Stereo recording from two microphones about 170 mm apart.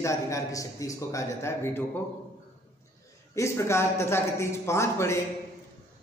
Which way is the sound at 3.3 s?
15° left (ahead or behind).